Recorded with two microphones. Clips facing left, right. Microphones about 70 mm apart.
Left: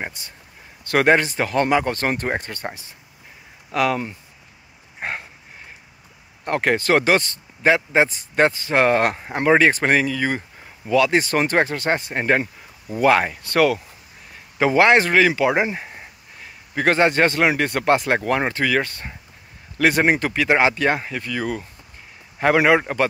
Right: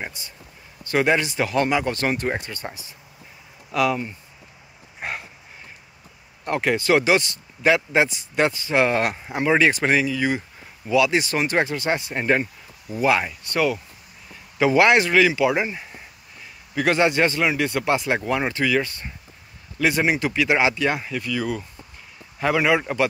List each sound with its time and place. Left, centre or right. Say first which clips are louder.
0.2 s speech: even; left
6.4 s speech: left 2 dB; left
7.7 s speech: left 2 dB; left
13.4 s speech: left 4 dB; left
14.6 s speech: left 1 dB; left
15.7 s a sound: left 4 dB; left
16.7 s speech: left 2 dB; left
22.8 s speech: left 1 dB; left